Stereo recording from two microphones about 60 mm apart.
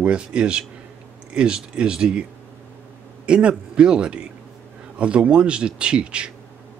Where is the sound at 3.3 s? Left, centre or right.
Centre.